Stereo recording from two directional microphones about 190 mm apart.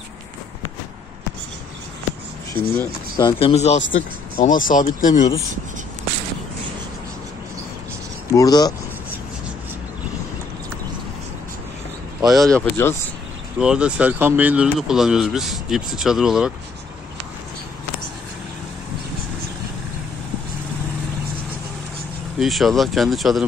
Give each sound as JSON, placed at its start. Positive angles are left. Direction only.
{"t": 2.5, "sound": "speech", "side_deg": 10}
{"t": 3.2, "sound": "speech", "side_deg": 25}
{"t": 8.3, "sound": "speech", "side_deg": 20}
{"t": 12.3, "sound": "speech", "side_deg": 0}
{"t": 13.6, "sound": "speech", "side_deg": -5}
{"t": 22.4, "sound": "speech", "side_deg": 0}